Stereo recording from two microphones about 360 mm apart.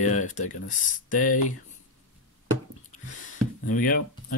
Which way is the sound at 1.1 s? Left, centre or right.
Left.